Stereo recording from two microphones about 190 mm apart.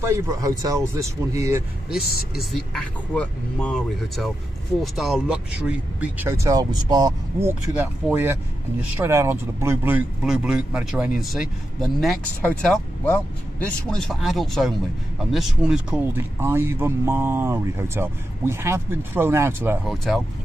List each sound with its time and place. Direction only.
0.0 s speech: 15° right (ahead or behind)
1.9 s speech: centre (ahead or behind)